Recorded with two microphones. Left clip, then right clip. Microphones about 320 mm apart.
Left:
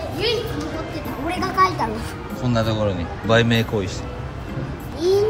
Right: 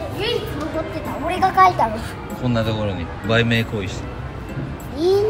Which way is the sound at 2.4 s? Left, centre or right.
Centre.